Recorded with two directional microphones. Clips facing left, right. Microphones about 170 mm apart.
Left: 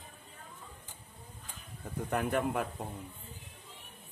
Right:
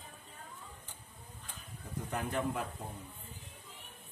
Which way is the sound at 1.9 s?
60° left (ahead or behind).